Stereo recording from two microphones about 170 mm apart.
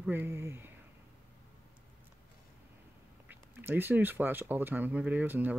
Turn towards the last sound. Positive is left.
turn(degrees=-10)  # may be behind; listen again after turning